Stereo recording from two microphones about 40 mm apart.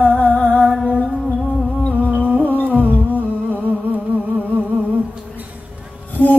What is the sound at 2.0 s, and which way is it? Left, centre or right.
Music, right.